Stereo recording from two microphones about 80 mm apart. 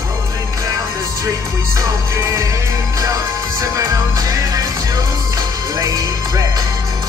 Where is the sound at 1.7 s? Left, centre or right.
Right.